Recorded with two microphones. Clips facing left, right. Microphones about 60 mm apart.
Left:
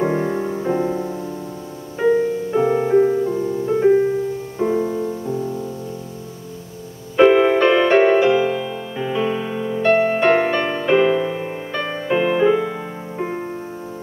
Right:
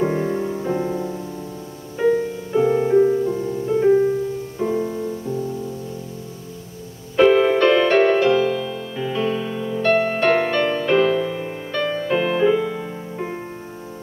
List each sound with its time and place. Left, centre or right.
0.0 s music: centre
7.2 s music: centre